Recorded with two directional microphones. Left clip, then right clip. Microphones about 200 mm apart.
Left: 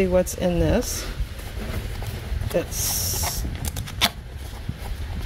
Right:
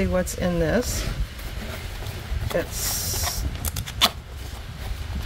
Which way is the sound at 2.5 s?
20° left (ahead or behind).